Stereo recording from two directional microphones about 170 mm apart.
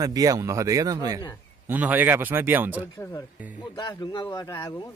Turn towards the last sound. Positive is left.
turn(degrees=20)  # may be behind; listen again after turning